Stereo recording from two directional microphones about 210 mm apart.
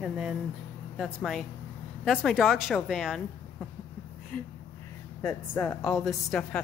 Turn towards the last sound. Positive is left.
turn(degrees=5)  # may be behind; listen again after turning